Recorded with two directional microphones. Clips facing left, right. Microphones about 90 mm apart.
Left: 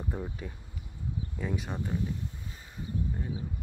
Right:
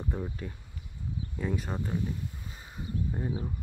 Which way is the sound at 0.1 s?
5° left (ahead or behind).